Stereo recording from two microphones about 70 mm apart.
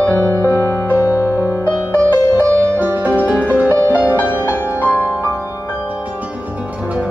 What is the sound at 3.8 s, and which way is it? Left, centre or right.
Music, left.